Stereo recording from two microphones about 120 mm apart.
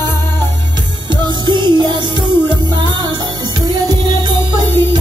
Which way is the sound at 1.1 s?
40° right (ahead or behind).